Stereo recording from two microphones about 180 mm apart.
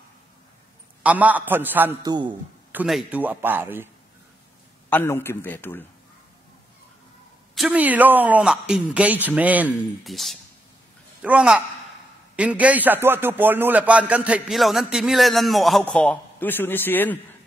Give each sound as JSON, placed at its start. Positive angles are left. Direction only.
{"t": 1.0, "sound": "speech", "side_deg": -10}
{"t": 2.0, "sound": "a man's voice", "side_deg": -25}
{"t": 2.7, "sound": "speech", "side_deg": -5}
{"t": 4.8, "sound": "a man's voice", "side_deg": 10}
{"t": 7.5, "sound": "a man's voice", "side_deg": -5}